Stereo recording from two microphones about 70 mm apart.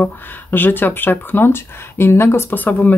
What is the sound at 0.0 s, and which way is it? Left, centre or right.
Speech, left.